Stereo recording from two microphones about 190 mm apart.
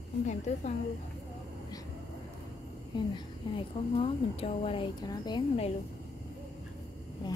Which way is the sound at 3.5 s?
30° left (ahead or behind).